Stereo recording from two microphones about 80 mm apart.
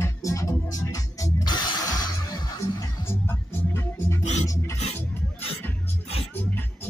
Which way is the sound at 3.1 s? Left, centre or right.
Left.